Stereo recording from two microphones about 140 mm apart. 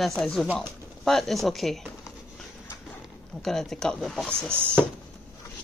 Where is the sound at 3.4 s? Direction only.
5° left (ahead or behind).